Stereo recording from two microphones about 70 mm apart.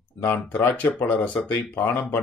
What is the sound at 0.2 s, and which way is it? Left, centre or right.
Speech, left.